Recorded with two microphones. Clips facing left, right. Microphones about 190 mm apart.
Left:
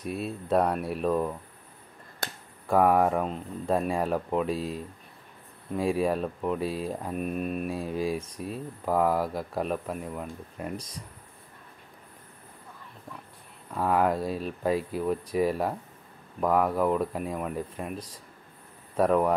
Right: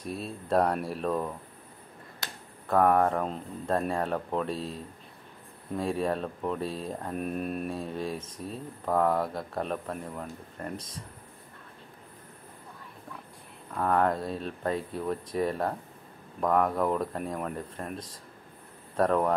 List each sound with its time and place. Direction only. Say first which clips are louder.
0.0 s speech: left 3 dB; 5° left (ahead or behind)
2.2 s a sound: left 5 dB; 50° left (ahead or behind)
2.7 s speech: left 1 dB; 10° left (ahead or behind)
5.8 s speech: left 3 dB; 5° left (ahead or behind)
13.7 s speech: left 1 dB; 5° left (ahead or behind)